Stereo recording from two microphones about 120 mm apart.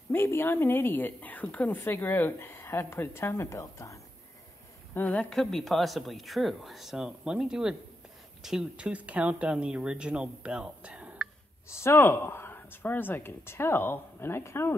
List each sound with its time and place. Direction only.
0.1 s a woman's voice: 20° left (ahead or behind)
4.9 s speech: 10° left (ahead or behind); by 11.2 s 10° right (ahead or behind)
11.7 s a woman's voice: 20° left (ahead or behind)